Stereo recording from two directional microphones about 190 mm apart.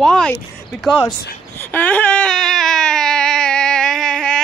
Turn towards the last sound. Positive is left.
turn(degrees=5)  # may be behind; listen again after turning